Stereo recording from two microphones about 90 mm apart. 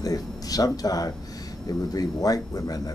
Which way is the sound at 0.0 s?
45° left (ahead or behind).